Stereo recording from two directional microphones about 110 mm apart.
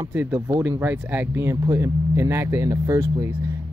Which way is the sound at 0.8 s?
20° right (ahead or behind).